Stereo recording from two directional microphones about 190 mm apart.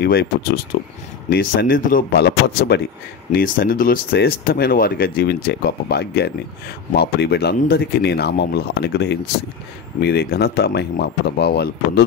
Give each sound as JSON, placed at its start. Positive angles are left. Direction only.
{"t": 0.0, "sound": "speech", "side_deg": 55}
{"t": 1.3, "sound": "speech", "side_deg": 50}